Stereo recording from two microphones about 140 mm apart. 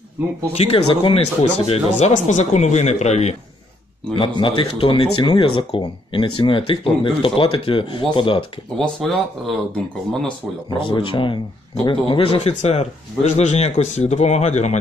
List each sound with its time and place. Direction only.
0.5 s speech: 45° left (ahead or behind)
4.1 s speech: 35° left (ahead or behind)
8.7 s speech: 5° left (ahead or behind)
10.8 s speech: 35° left (ahead or behind); by 14.8 s 55° left (ahead or behind)